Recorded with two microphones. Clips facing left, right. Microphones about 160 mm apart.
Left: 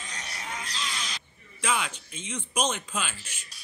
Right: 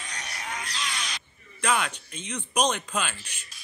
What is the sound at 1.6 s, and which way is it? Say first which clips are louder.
A man's voice: right 3 dB; 60° right (ahead or behind).